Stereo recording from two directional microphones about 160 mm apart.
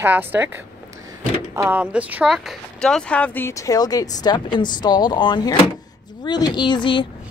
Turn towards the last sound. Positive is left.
turn(degrees=30)  # may be behind; listen again after turning